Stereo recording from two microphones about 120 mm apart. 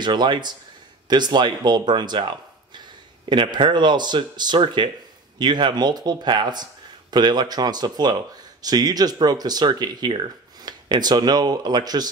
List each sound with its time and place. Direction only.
0.0 s speech: 40° right (ahead or behind)